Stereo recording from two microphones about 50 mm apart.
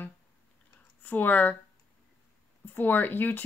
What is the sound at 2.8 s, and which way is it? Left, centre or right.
Speech, left.